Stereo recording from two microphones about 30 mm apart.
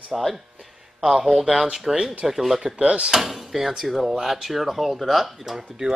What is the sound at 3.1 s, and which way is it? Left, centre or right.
Speech, centre.